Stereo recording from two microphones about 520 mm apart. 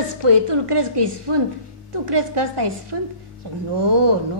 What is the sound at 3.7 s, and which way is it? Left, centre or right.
Speech, right.